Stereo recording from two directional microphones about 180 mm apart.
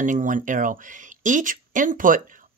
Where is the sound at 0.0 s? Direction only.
45° right (ahead or behind).